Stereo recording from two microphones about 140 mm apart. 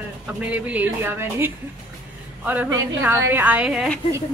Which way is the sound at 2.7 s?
15° right (ahead or behind).